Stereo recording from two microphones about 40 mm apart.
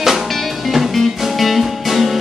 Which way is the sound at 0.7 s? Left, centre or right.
Centre.